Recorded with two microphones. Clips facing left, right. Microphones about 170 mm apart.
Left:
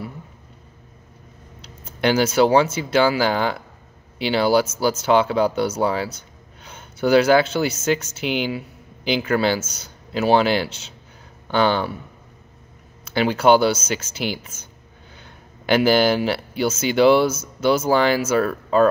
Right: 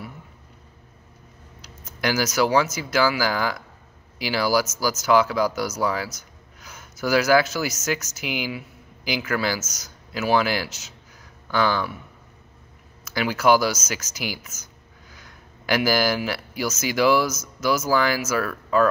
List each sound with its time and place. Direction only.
1.6 s speech: 25° left (ahead or behind)
13.0 s speech: 30° left (ahead or behind)